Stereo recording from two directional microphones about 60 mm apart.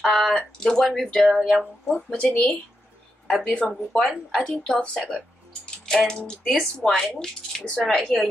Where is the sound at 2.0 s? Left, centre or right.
Centre.